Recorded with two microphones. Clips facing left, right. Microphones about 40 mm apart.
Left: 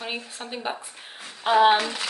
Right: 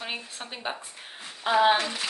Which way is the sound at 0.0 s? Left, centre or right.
Centre.